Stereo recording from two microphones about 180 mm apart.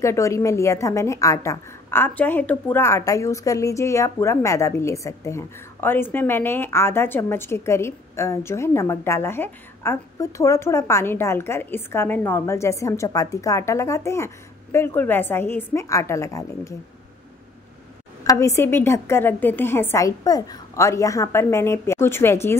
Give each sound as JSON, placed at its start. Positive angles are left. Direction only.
{"t": 0.0, "sound": "a woman's voice", "side_deg": 15}
{"t": 18.2, "sound": "a woman's voice", "side_deg": 20}